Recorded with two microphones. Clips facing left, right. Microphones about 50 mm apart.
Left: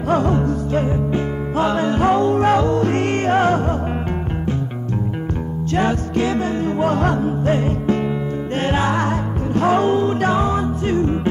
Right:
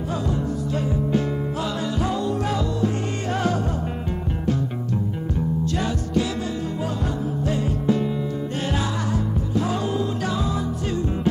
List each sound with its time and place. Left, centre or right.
0.1 s music: left
0.7 s music: left
3.3 s music: left
5.8 s music: left